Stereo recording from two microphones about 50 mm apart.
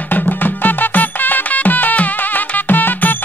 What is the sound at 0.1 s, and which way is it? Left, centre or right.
Music, left.